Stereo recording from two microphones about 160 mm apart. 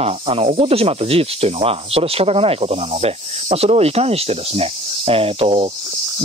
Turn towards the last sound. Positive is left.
turn(degrees=-35)  # may be behind; listen again after turning